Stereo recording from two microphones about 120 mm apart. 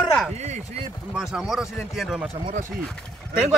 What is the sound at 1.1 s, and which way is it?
Speech, 5° right (ahead or behind).